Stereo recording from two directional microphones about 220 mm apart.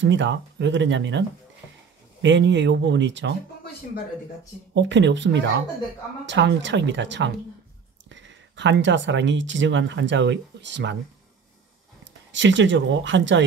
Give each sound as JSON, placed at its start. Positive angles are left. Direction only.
{"t": 0.0, "sound": "speech", "side_deg": -55}
{"t": 2.2, "sound": "speech", "side_deg": -55}
{"t": 4.7, "sound": "speech", "side_deg": -55}
{"t": 12.0, "sound": "speech", "side_deg": -55}